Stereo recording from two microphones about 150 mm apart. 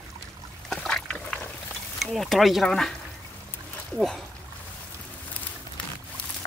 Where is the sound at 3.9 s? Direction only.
Centre (ahead or behind).